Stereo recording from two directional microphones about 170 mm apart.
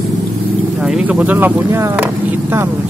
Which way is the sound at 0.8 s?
5° right (ahead or behind).